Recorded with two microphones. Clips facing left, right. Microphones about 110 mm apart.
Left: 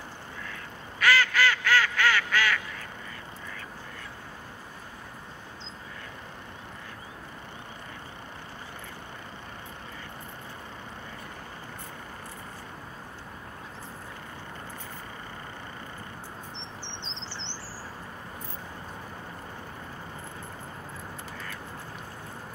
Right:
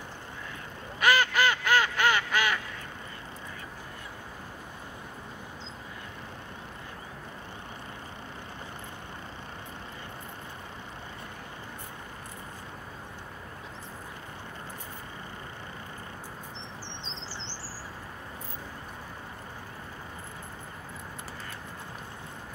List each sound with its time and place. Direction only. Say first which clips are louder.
0.9 s quack: even; 20° right (ahead or behind)